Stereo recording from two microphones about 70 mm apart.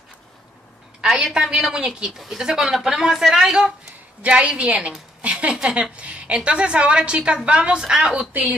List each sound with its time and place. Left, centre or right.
1.0 s a woman's voice: centre
5.2 s a sound: centre
5.5 s a woman's voice: centre
8.3 s a woman's voice: right